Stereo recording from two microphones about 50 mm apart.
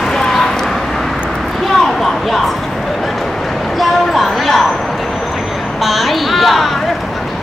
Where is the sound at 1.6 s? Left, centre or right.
Centre.